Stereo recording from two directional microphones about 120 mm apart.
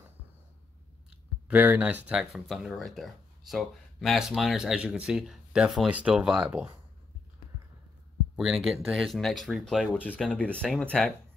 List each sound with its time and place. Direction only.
1.5 s speech: 15° right (ahead or behind)
8.4 s speech: centre (ahead or behind)
9.9 s speech: 10° left (ahead or behind)